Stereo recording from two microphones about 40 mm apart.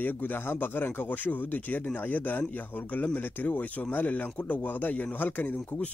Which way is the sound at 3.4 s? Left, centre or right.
Left.